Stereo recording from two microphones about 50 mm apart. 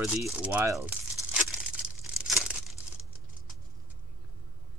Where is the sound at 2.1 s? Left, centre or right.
Centre.